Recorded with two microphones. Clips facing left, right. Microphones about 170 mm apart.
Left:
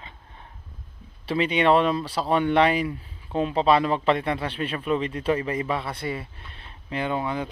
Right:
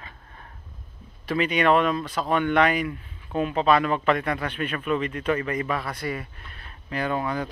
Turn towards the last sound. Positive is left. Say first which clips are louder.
# even
turn(degrees=20)  # may be behind; listen again after turning